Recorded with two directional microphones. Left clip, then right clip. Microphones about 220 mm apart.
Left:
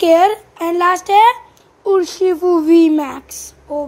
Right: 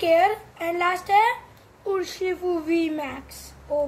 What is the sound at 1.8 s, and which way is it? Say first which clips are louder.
Speech: left 12 dB; 25° left (ahead or behind).